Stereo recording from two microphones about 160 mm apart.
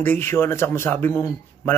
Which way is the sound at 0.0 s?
10° left (ahead or behind).